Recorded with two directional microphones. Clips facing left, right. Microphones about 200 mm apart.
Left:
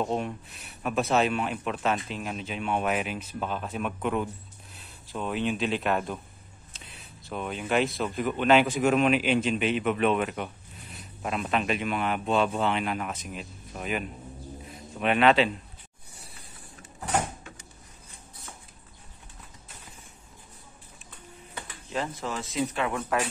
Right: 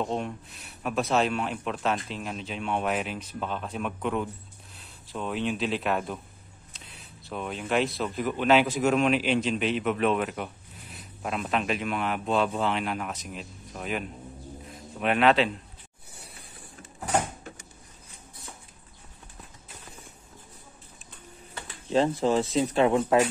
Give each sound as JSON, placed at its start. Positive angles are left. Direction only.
{"t": 0.0, "sound": "speech", "side_deg": 5}
{"t": 21.8, "sound": "speech", "side_deg": -30}